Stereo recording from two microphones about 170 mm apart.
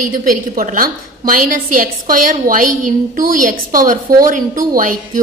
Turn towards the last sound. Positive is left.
turn(degrees=-50)  # may be behind; listen again after turning